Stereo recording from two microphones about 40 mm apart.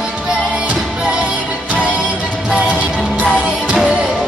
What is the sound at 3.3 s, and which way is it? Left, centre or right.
Music, right.